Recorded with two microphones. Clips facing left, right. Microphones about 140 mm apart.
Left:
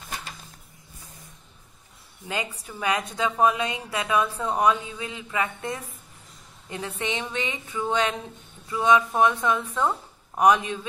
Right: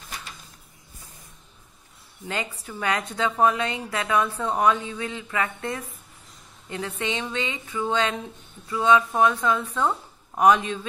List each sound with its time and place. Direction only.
2.2 s a woman's voice: 15° left (ahead or behind)